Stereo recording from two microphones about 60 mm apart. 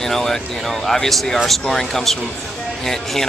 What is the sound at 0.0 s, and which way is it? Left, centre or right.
Speech, centre.